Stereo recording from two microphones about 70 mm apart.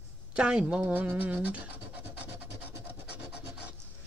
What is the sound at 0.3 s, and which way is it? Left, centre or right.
Speech, centre.